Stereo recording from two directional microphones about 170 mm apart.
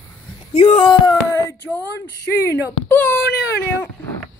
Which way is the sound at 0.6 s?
35° left (ahead or behind).